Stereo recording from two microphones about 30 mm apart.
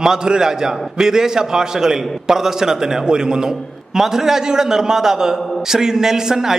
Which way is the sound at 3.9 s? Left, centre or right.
Centre.